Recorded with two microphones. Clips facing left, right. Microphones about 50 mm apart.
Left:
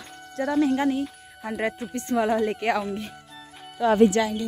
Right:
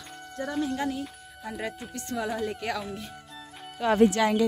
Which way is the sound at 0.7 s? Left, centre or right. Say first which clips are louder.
Left 6 dB; left.